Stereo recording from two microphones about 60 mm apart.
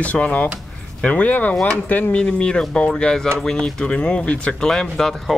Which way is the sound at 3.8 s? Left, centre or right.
Centre.